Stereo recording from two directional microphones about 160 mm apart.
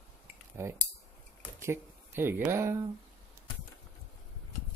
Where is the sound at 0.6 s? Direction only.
15° right (ahead or behind).